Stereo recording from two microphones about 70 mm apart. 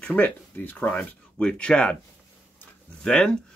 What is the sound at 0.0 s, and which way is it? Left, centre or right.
Speech, centre.